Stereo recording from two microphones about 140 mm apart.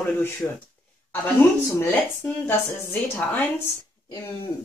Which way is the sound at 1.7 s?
15° left (ahead or behind).